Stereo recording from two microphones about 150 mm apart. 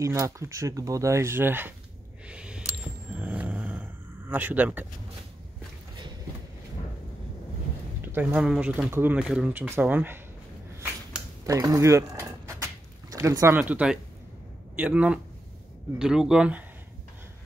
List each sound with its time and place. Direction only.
0.0 s speech: 20° right (ahead or behind)
2.2 s a sound: 5° right (ahead or behind)
3.2 s dog: 10° right (ahead or behind)
8.0 s speech: 10° right (ahead or behind)
11.4 s speech: 25° right (ahead or behind)
13.6 s speech: 10° right (ahead or behind)